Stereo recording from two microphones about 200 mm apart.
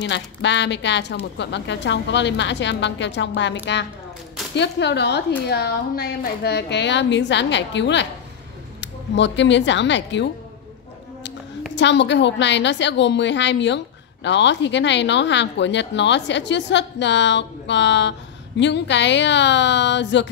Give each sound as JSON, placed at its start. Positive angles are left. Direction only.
{"t": 0.0, "sound": "speech", "side_deg": 65}
{"t": 11.7, "sound": "speech", "side_deg": 60}